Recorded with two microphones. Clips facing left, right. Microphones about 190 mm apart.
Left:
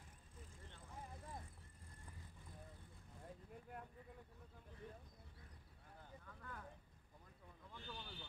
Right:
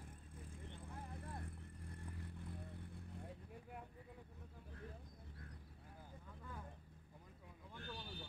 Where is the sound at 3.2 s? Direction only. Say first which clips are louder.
Right 2 dB; centre (ahead or behind).